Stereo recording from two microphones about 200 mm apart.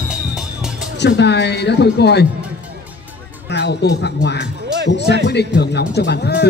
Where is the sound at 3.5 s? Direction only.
55° left (ahead or behind).